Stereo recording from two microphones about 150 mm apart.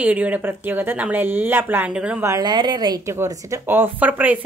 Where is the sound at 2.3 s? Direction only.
25° right (ahead or behind).